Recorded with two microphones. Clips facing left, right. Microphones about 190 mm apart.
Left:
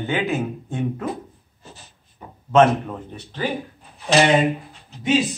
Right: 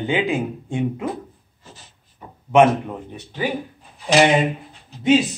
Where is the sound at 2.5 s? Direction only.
15° right (ahead or behind).